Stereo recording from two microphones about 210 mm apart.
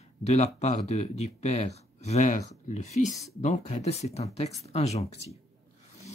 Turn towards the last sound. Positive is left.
turn(degrees=30)  # may be behind; listen again after turning